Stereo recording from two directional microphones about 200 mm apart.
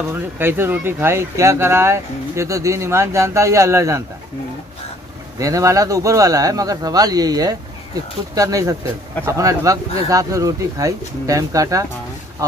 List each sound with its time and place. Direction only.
0.1 s speech: 10° right (ahead or behind)
5.4 s speech: 15° right (ahead or behind)